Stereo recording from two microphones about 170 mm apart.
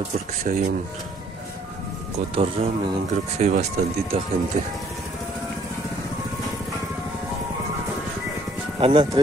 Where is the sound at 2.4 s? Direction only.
35° right (ahead or behind).